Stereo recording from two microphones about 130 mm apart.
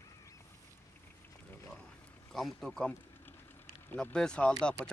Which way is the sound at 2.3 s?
Centre (ahead or behind).